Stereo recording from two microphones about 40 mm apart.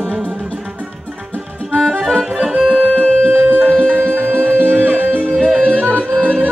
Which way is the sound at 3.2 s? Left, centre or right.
Right.